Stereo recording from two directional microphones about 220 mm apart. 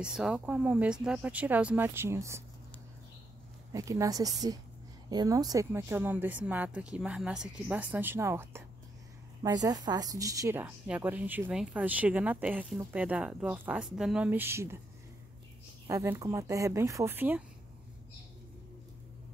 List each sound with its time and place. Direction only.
0.0 s speech: 5° right (ahead or behind)
3.7 s a woman's voice: 15° right (ahead or behind)
15.9 s a woman's voice: 15° right (ahead or behind)